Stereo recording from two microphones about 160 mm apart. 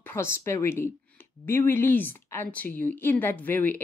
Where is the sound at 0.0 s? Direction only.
15° left (ahead or behind).